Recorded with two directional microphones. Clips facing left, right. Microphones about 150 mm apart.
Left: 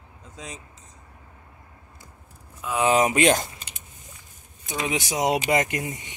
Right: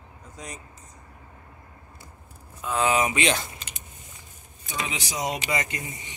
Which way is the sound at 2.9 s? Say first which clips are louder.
Left 9 dB; 45° left (ahead or behind).